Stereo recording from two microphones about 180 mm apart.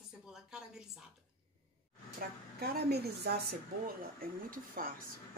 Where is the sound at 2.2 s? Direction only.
60° right (ahead or behind).